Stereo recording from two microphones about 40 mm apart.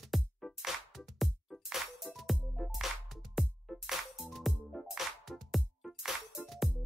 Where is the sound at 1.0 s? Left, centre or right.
Centre.